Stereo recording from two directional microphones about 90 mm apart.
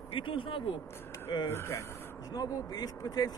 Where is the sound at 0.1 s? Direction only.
70° left (ahead or behind).